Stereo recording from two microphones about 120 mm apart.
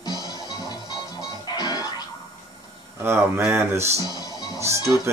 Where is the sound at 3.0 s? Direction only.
15° right (ahead or behind).